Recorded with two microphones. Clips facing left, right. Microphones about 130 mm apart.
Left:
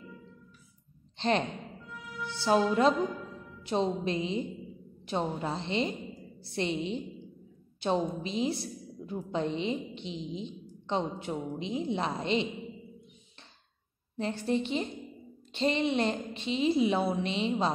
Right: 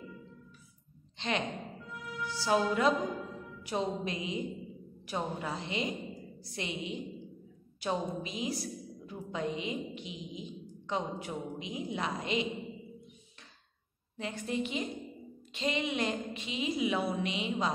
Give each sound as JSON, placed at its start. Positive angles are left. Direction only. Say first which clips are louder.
{"t": 1.1, "sound": "a sound", "louder": "left 6 dB", "side_deg": 35}
{"t": 2.2, "sound": "a woman's voice", "louder": "left 3 dB", "side_deg": 25}
{"t": 14.1, "sound": "a woman's voice", "louder": "left 5 dB", "side_deg": 35}